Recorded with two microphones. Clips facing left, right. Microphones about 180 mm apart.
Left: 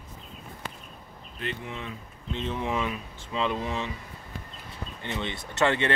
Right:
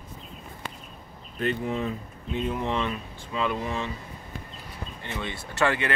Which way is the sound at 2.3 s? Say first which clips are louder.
Right 3 dB; 10° right (ahead or behind).